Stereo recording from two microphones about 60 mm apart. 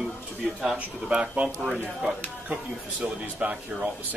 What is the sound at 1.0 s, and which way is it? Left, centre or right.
Speech, centre.